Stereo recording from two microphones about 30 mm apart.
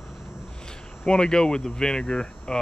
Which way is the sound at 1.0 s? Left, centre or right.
Left.